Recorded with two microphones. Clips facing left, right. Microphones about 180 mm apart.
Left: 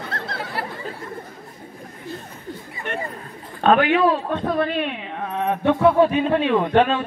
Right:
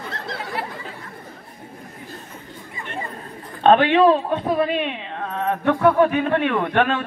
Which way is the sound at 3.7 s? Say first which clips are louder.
Right 2 dB; 30° right (ahead or behind).